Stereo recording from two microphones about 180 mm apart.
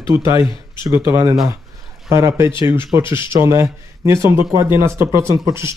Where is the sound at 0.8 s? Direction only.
15° right (ahead or behind).